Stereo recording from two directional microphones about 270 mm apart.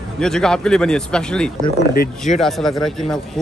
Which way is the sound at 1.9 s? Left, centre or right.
Left.